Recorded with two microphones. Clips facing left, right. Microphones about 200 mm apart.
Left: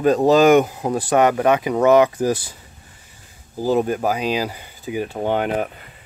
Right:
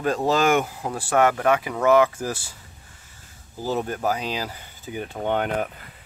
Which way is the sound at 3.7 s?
15° left (ahead or behind).